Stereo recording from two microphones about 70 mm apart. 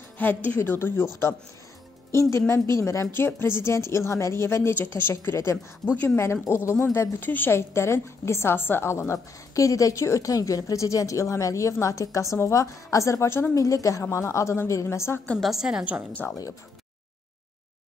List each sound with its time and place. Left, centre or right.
0.2 s a woman's voice: left
3.1 s a woman's voice: left
7.5 s a woman's voice: left
15.4 s a woman's voice: centre
16.1 s a woman's voice: left